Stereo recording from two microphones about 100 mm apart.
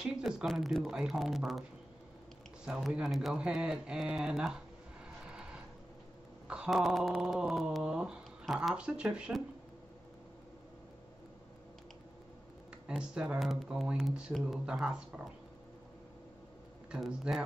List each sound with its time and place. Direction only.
0.0 s speech: 10° right (ahead or behind)
2.6 s speech: 10° right (ahead or behind)
6.4 s speech: 10° right (ahead or behind)
12.8 s speech: 10° right (ahead or behind)
13.4 s speech: centre (ahead or behind)
16.9 s speech: 5° right (ahead or behind)